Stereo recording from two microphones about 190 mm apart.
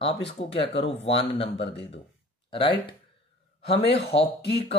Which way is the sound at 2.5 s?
30° left (ahead or behind).